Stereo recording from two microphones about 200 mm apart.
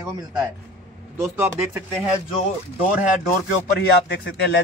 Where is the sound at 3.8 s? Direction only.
55° left (ahead or behind).